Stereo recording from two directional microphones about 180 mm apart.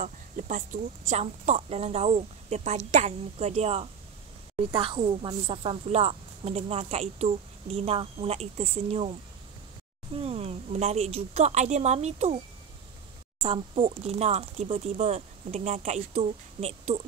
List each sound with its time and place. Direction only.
0.0 s speech: 45° right (ahead or behind)
10.1 s speech: 35° right (ahead or behind)
13.4 s speech: 35° right (ahead or behind)